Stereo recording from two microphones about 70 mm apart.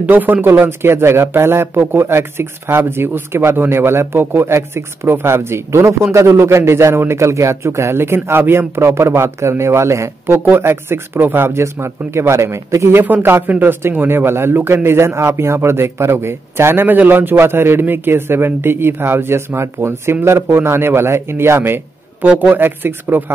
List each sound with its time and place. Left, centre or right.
0.0 s a man's voice: right
10.2 s a man's voice: right
13.0 s a man's voice: right